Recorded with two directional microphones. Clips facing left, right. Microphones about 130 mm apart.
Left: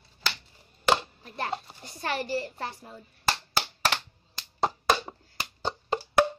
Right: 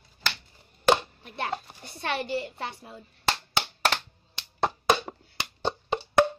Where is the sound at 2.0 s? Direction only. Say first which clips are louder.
Even; 20° right (ahead or behind).